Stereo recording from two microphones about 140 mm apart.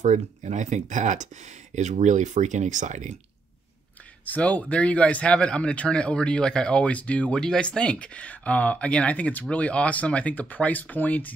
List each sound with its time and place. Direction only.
0.0 s speech: 55° right (ahead or behind)
4.3 s speech: 10° left (ahead or behind)